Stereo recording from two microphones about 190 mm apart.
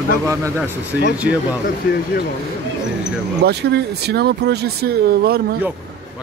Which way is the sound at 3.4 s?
60° right (ahead or behind).